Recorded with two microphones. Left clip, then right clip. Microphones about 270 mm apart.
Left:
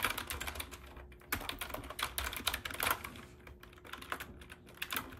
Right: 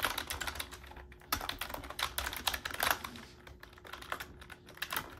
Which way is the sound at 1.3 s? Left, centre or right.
Centre.